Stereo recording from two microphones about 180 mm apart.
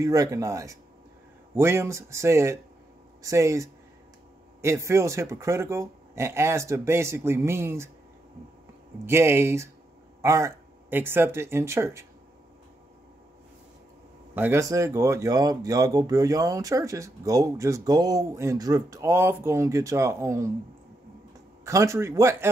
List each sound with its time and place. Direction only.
0.0 s speech: 20° right (ahead or behind)
9.0 s speech: 15° right (ahead or behind)
14.3 s speech: 10° right (ahead or behind)
21.6 s speech: 15° right (ahead or behind)